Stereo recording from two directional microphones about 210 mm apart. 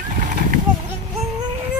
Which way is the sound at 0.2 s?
40° right (ahead or behind).